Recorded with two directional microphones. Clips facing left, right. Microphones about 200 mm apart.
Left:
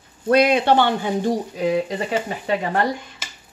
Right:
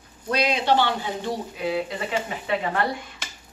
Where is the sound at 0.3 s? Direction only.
55° left (ahead or behind); by 2.8 s 40° left (ahead or behind).